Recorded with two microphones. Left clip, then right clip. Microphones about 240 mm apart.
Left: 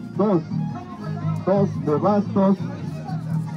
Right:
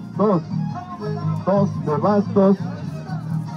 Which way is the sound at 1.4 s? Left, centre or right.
Centre.